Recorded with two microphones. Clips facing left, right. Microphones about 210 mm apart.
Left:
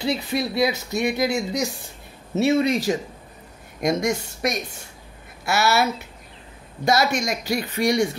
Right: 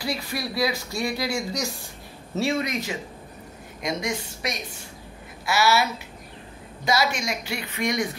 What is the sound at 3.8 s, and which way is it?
Speech, 45° left (ahead or behind).